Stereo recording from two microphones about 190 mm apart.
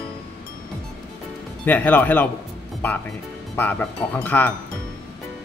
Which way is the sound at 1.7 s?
10° left (ahead or behind).